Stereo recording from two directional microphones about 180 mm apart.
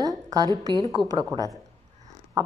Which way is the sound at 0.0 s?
20° right (ahead or behind).